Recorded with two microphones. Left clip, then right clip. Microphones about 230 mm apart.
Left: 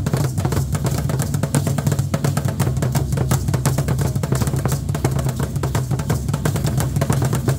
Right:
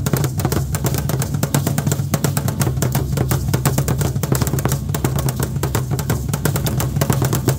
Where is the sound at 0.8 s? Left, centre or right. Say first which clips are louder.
Right 2 dB; right.